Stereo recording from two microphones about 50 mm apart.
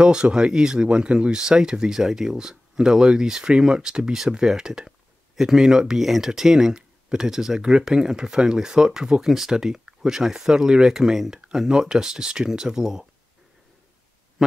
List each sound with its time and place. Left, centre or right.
0.0 s speech: centre